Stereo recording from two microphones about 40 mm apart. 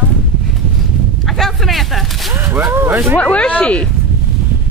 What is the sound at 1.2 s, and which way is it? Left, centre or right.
Speech, centre.